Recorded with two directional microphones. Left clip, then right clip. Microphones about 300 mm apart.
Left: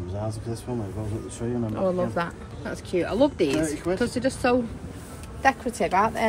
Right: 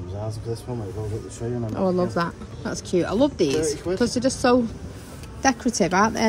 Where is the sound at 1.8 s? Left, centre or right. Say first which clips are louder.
Right 3 dB; centre.